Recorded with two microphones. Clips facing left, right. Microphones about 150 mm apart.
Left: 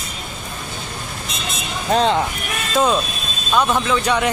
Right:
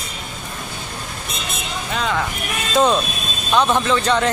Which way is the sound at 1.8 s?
30° left (ahead or behind).